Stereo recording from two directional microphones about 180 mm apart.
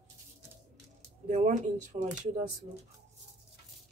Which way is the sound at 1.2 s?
40° right (ahead or behind).